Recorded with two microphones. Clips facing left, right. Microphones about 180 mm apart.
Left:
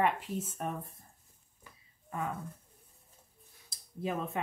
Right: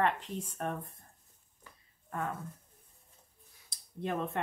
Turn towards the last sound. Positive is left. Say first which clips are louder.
# even
turn(degrees=0)  # may be behind; listen again after turning